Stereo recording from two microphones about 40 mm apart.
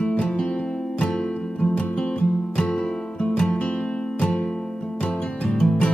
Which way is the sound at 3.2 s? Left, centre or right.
Left.